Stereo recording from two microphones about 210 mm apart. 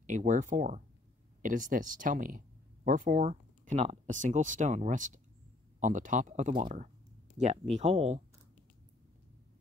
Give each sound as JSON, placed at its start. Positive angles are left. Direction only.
{"t": 0.0, "sound": "speech", "side_deg": -35}